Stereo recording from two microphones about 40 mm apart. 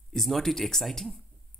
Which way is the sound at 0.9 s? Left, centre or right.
Centre.